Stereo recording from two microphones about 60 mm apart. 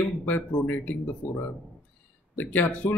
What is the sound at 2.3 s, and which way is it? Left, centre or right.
Speech, left.